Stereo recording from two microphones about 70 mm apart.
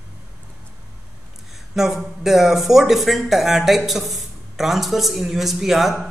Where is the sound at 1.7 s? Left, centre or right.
Centre.